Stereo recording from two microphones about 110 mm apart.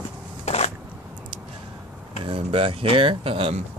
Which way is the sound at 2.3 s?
60° right (ahead or behind).